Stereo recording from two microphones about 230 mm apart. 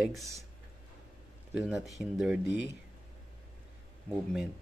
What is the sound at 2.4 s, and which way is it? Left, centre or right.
Speech, left.